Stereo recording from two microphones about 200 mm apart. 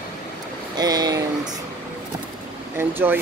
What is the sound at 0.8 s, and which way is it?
Speech, 20° right (ahead or behind).